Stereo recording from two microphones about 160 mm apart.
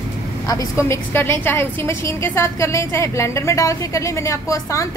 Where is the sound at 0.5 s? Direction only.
20° left (ahead or behind).